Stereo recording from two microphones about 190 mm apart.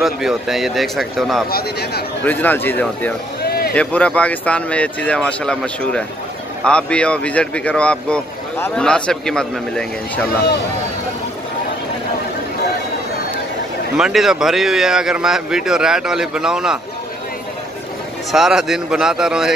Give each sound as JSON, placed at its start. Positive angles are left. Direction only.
{"t": 0.0, "sound": "speech", "side_deg": 0}
{"t": 1.5, "sound": "a man's voice", "side_deg": 55}
{"t": 2.2, "sound": "speech", "side_deg": 10}
{"t": 3.4, "sound": "a sound", "side_deg": 55}
{"t": 3.7, "sound": "speech", "side_deg": 5}
{"t": 13.9, "sound": "speech", "side_deg": 0}
{"t": 18.3, "sound": "speech", "side_deg": 0}